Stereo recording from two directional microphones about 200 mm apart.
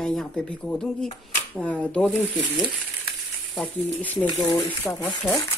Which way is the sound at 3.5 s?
5° left (ahead or behind).